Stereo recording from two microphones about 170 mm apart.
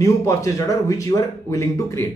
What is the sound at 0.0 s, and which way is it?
Speech, 20° left (ahead or behind).